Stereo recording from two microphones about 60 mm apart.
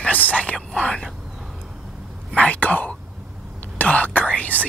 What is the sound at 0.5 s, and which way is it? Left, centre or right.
Speech, centre.